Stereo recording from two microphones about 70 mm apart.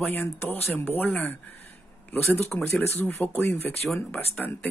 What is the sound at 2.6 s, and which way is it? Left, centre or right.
Speech, left.